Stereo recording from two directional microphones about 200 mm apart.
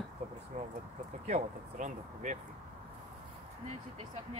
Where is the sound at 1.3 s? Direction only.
40° right (ahead or behind).